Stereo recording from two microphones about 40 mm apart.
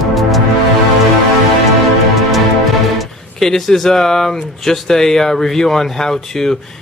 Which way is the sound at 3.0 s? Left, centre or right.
Centre.